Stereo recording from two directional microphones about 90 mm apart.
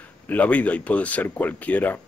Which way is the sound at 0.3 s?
15° left (ahead or behind).